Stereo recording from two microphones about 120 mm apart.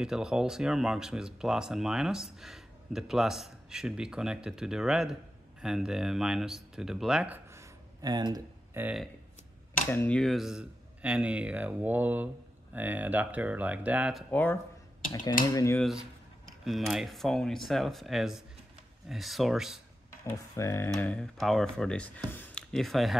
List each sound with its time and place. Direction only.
0.0 s speech: 5° right (ahead or behind); by 8.1 s 25° right (ahead or behind)
8.1 s speech: 35° right (ahead or behind)
8.8 s speech: 20° right (ahead or behind)
9.8 s speech: 15° left (ahead or behind); by 14.1 s 10° right (ahead or behind)
14.3 s speech: 15° left (ahead or behind)
15.2 s speech: 30° left (ahead or behind)
15.8 s speech: 5° right (ahead or behind)
20.3 s speech: 25° left (ahead or behind)
21.4 s speech: centre (ahead or behind)